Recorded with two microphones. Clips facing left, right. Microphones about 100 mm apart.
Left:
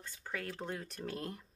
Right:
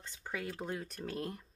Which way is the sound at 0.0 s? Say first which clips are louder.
Right 1 dB; 15° right (ahead or behind).